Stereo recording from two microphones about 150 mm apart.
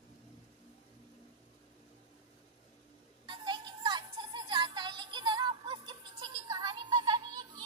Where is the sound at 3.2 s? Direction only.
30° right (ahead or behind).